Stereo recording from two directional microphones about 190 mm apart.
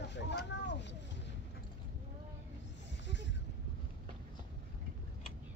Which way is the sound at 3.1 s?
70° left (ahead or behind).